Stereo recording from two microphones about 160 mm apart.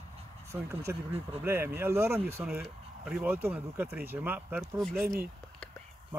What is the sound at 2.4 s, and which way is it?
Speech, 5° right (ahead or behind).